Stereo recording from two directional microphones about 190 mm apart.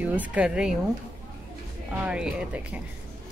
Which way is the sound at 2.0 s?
5° right (ahead or behind).